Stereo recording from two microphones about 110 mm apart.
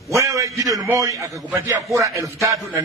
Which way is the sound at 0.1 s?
30° right (ahead or behind).